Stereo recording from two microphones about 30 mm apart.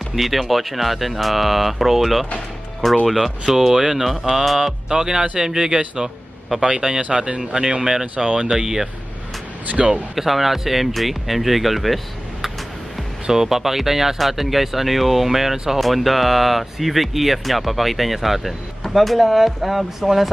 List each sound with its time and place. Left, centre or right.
0.1 s speech: centre
2.8 s speech: centre
3.5 s speech: centre
7.0 s speech: right
7.5 s speech: right
10.1 s speech: centre
13.3 s speech: centre
15.5 s speech: centre
15.8 s speech: centre